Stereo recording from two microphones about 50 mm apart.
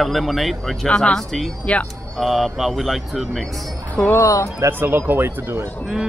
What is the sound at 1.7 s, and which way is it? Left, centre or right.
Speech, left.